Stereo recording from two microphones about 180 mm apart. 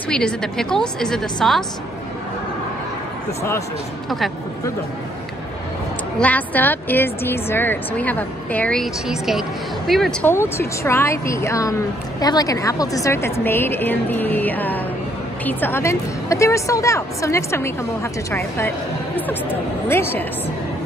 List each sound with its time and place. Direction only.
0.1 s a woman's voice: 5° left (ahead or behind)
6.1 s a woman's voice: 10° left (ahead or behind)
10.2 s speech: 15° left (ahead or behind)